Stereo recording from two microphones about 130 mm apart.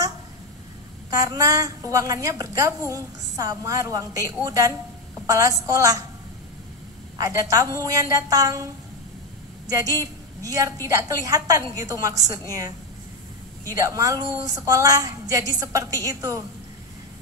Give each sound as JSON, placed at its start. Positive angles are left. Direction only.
{"t": 1.2, "sound": "a woman's voice", "side_deg": -30}
{"t": 7.2, "sound": "a woman's voice", "side_deg": -25}
{"t": 9.7, "sound": "a woman's voice", "side_deg": -25}